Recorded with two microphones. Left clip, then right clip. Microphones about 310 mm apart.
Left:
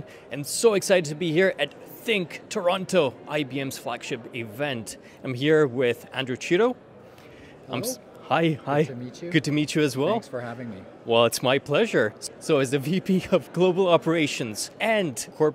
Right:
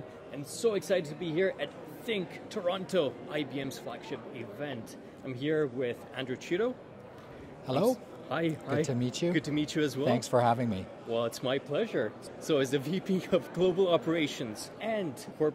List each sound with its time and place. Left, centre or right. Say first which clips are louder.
0.3 s speech: left 9 dB; left
8.3 s speech: left 9 dB; left
8.8 s speech: right 3 dB; right
9.3 s speech: left 13 dB; left
10.1 s speech: right 4 dB; right
11.1 s speech: left 11 dB; left